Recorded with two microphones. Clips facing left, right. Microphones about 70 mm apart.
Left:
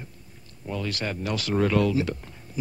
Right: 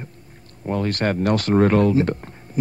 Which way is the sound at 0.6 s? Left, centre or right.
Right.